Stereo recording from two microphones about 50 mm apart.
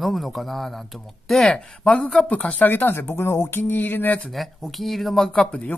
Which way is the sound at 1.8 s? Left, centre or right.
Left.